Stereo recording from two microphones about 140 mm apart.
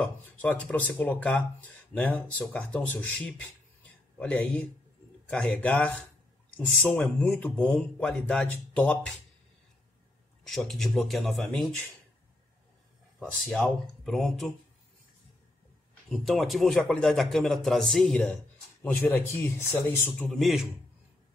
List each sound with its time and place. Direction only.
0.0 s a man's voice: 10° left (ahead or behind)
10.4 s a man's voice: centre (ahead or behind)
13.2 s a man's voice: 5° left (ahead or behind)
16.1 s a man's voice: centre (ahead or behind); by 20.2 s 15° left (ahead or behind)
20.3 s a man's voice: centre (ahead or behind)